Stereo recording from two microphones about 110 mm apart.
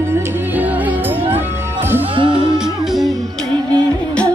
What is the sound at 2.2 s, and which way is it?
Music, 45° right (ahead or behind).